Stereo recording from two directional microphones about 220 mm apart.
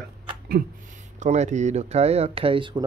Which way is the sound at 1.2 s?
30° right (ahead or behind).